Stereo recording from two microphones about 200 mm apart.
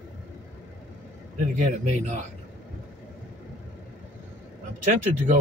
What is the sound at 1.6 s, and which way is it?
Speech, 35° right (ahead or behind).